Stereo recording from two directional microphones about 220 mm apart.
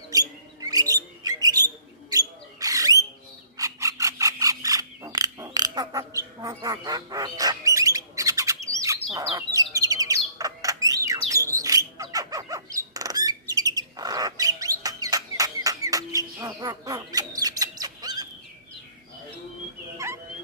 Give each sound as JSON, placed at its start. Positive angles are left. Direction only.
{"t": 0.6, "sound": "bird", "side_deg": -15}
{"t": 3.5, "sound": "a sound", "side_deg": -15}
{"t": 9.1, "sound": "bird", "side_deg": -15}